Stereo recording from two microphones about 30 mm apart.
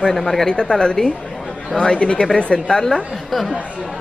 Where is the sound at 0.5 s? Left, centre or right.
Left.